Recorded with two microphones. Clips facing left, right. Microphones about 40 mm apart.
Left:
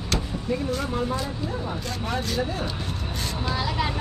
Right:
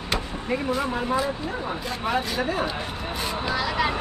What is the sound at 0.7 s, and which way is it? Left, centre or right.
Speech, right.